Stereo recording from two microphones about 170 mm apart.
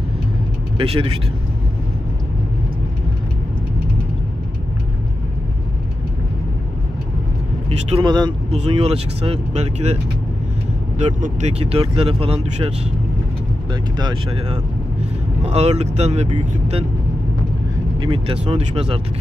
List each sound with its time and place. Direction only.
0.7 s speech: 35° right (ahead or behind)
7.9 s speech: 25° right (ahead or behind)
8.5 s speech: 40° right (ahead or behind)
11.0 s speech: 45° right (ahead or behind)
13.9 s speech: 25° right (ahead or behind)
15.4 s speech: 40° right (ahead or behind)
17.9 s speech: 30° right (ahead or behind)